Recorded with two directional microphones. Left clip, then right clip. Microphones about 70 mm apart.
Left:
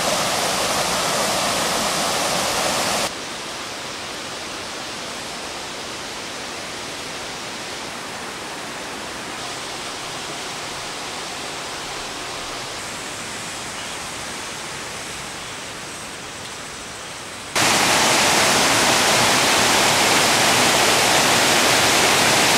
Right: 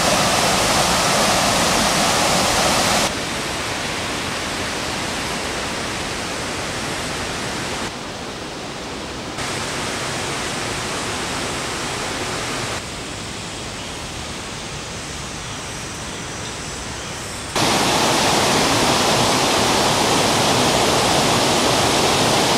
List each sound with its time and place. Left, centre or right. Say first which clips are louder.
0.0 s waterfall: right 4 dB; centre
17.6 s waterfall: left 1 dB; left